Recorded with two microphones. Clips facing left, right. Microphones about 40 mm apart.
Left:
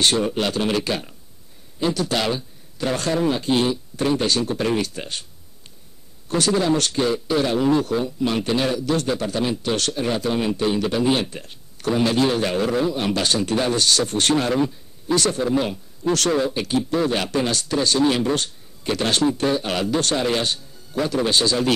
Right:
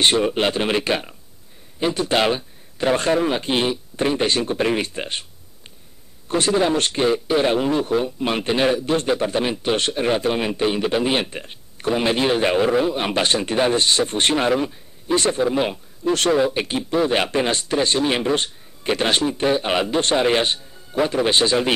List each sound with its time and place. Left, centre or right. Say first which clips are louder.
0.0 s a man's voice: right 2 dB; right
6.2 s a man's voice: right 1 dB; right
14.5 s a man's voice: even; centre
15.1 s a man's voice: right 2 dB; right
16.3 s speech: right 4 dB; centre
16.5 s a man's voice: right 1 dB; right